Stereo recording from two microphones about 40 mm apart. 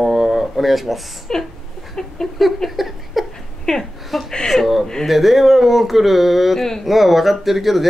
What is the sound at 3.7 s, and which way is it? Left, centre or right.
Speech, centre.